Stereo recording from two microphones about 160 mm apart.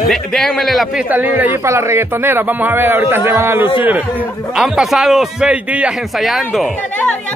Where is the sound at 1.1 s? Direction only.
10° right (ahead or behind).